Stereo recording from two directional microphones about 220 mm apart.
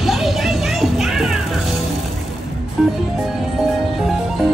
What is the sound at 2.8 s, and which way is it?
Music, 5° right (ahead or behind).